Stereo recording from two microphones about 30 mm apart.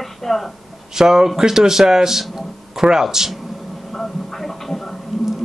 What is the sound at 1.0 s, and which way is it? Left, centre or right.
Speech, centre.